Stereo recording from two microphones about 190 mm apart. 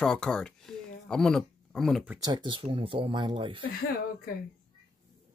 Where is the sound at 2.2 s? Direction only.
25° right (ahead or behind).